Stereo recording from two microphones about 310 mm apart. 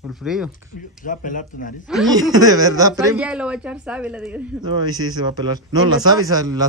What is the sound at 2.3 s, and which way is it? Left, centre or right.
A woman's voice, centre.